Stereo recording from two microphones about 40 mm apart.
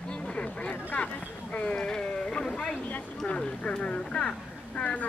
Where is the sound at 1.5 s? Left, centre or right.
Left.